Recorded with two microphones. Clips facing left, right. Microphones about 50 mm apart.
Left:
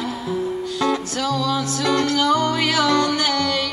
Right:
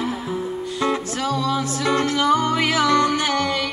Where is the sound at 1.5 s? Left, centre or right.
Right.